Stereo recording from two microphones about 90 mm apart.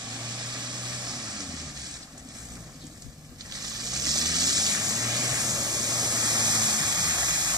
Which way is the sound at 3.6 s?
45° right (ahead or behind).